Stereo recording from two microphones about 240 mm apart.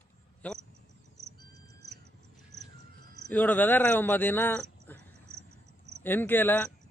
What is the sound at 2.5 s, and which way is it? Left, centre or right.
Cricket, right.